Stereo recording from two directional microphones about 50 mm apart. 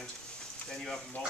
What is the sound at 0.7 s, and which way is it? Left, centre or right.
Speech, centre.